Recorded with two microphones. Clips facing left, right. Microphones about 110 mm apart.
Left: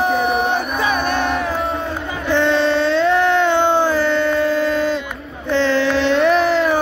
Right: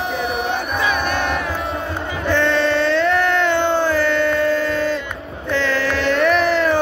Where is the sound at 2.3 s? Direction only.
20° left (ahead or behind).